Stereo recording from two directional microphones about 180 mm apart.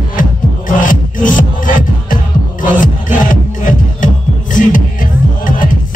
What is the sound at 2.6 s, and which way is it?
Music, 45° left (ahead or behind).